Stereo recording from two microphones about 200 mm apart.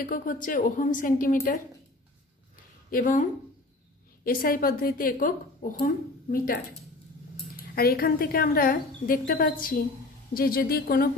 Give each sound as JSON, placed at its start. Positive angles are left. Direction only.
{"t": 0.0, "sound": "a woman's voice", "side_deg": 45}
{"t": 2.9, "sound": "a woman's voice", "side_deg": 40}
{"t": 7.7, "sound": "a woman's voice", "side_deg": 50}